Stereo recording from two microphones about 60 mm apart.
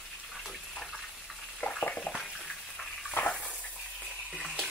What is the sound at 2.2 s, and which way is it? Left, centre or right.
Water, centre.